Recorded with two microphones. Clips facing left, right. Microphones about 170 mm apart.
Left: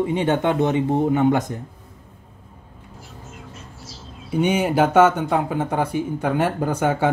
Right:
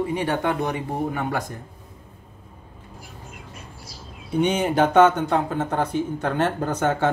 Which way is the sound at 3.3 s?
10° right (ahead or behind).